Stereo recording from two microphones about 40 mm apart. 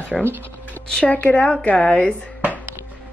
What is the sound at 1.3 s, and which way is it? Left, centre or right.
Speech, left.